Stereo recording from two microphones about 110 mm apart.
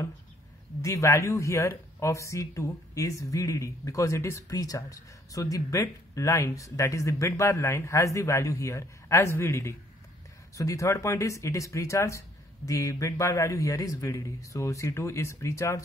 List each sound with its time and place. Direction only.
0.8 s speech: 30° left (ahead or behind)